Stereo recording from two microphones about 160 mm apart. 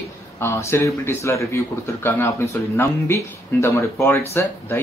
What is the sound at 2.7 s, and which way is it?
Speech, 15° left (ahead or behind).